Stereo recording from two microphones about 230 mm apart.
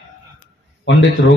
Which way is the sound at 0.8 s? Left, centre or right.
Left.